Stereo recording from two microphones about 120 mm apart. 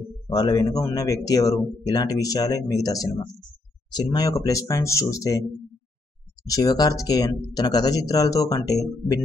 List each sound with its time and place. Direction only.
0.3 s speech: 35° left (ahead or behind)
6.4 s speech: 30° left (ahead or behind)